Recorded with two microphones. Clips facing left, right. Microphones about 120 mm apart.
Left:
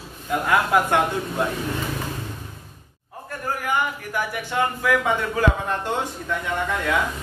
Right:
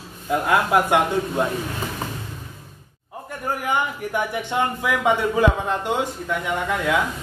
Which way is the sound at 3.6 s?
20° right (ahead or behind).